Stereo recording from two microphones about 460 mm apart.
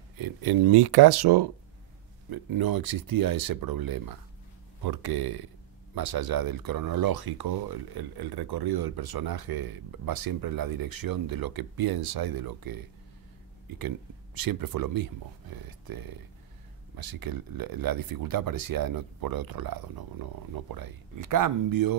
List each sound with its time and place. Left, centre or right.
0.2 s speech: right